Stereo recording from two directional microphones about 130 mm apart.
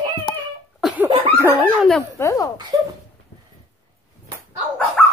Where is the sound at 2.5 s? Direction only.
35° right (ahead or behind).